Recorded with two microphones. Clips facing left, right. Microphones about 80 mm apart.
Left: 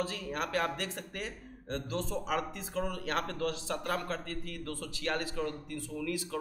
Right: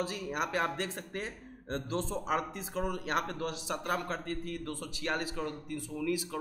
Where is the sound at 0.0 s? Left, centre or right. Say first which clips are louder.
Right 1 dB; centre.